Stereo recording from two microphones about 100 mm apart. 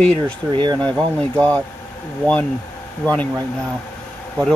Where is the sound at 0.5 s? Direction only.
50° right (ahead or behind).